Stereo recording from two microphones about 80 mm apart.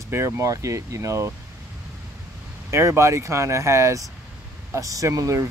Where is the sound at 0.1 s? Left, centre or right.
Right.